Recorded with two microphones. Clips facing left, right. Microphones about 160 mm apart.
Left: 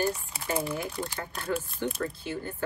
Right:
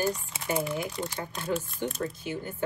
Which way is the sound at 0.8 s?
15° right (ahead or behind).